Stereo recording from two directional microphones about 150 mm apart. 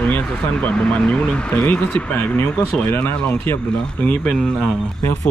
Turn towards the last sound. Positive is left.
turn(degrees=5)  # may be behind; listen again after turning